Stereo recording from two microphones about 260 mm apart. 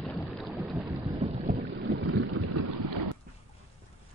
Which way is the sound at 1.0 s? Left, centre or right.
Right.